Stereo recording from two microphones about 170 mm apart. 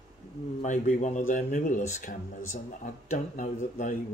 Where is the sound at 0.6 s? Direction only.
45° left (ahead or behind).